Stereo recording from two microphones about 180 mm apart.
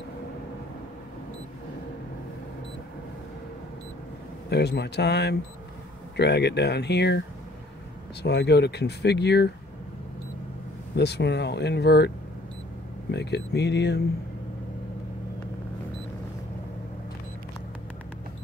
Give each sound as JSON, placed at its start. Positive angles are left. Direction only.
{"t": 4.5, "sound": "speech", "side_deg": 70}
{"t": 11.0, "sound": "speech", "side_deg": 70}
{"t": 13.1, "sound": "speech", "side_deg": 70}